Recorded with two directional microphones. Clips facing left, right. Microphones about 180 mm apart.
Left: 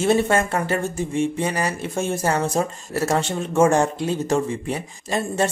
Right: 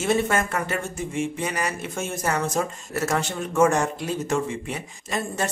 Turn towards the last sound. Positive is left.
turn(degrees=30)  # may be behind; listen again after turning